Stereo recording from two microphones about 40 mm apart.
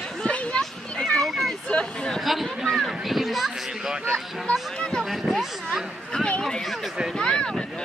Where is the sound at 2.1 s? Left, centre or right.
Centre.